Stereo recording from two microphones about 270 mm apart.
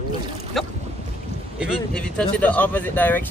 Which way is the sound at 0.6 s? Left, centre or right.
Centre.